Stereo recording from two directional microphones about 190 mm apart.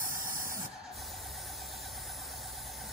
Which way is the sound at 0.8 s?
Centre (ahead or behind).